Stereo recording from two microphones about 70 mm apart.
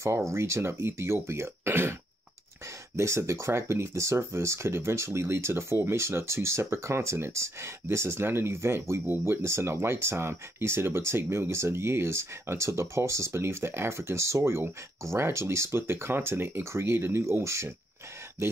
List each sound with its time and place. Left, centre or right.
0.0 s speech: right
3.0 s speech: right